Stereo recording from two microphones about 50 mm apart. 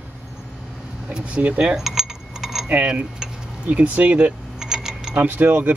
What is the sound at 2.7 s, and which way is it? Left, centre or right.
Speech, right.